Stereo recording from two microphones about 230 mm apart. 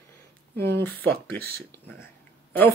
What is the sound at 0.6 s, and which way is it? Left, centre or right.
Speech, centre.